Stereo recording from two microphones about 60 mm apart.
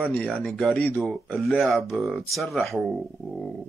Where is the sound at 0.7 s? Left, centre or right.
Left.